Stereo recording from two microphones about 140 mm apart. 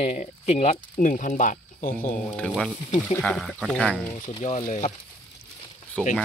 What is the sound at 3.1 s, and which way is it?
Speech, 5° left (ahead or behind).